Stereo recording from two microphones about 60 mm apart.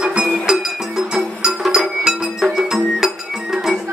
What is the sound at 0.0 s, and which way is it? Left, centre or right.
Music, centre.